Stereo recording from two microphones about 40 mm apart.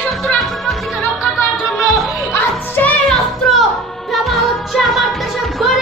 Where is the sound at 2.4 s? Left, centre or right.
Left.